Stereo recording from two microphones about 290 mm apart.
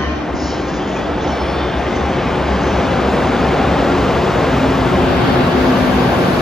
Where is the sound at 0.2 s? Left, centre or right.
Centre.